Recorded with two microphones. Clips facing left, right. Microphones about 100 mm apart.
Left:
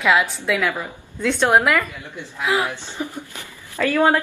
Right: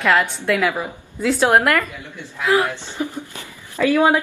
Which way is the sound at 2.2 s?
15° left (ahead or behind).